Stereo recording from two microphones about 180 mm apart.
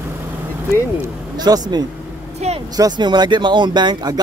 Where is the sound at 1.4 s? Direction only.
20° right (ahead or behind).